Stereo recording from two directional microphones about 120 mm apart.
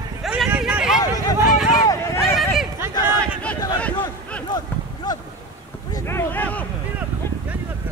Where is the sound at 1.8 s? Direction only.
30° left (ahead or behind).